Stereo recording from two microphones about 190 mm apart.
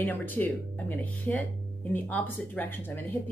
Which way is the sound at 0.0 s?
10° left (ahead or behind).